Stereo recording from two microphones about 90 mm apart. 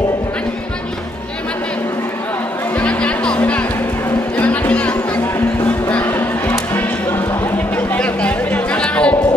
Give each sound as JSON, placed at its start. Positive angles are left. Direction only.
{"t": 2.8, "sound": "music", "side_deg": 15}
{"t": 4.4, "sound": "chatter", "side_deg": 15}
{"t": 5.6, "sound": "music", "side_deg": 20}
{"t": 7.7, "sound": "chatter", "side_deg": 15}